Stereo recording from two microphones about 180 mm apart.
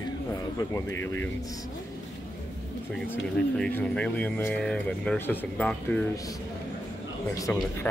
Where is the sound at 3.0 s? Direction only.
5° left (ahead or behind).